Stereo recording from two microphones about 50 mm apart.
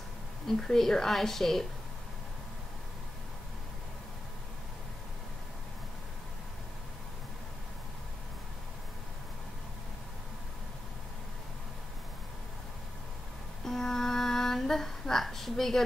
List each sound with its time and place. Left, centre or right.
0.5 s a woman's voice: centre
13.7 s female singing: centre